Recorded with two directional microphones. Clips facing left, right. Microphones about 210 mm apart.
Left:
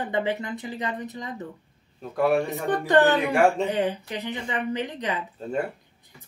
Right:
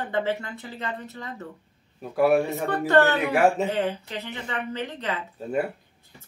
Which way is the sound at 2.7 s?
15° left (ahead or behind).